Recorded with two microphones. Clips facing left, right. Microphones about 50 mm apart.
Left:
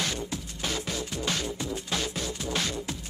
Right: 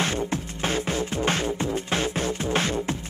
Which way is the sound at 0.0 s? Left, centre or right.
Right.